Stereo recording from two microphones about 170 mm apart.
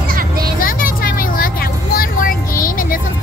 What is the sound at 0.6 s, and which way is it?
Vehicle, 55° left (ahead or behind).